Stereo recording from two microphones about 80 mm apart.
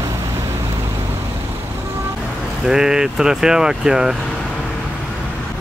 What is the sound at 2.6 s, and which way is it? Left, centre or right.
Speech, centre.